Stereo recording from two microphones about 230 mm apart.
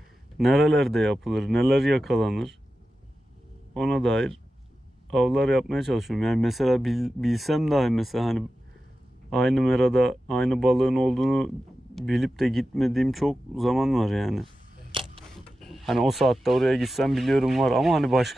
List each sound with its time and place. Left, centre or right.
0.4 s speech: centre
3.7 s speech: centre
14.9 s a sound: right
15.6 s speech: centre